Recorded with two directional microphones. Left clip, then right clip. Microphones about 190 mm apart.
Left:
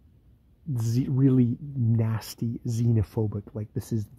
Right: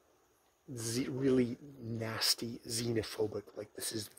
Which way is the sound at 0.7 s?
25° left (ahead or behind).